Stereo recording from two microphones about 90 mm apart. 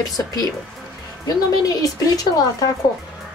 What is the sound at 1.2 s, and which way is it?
Speech, 45° left (ahead or behind).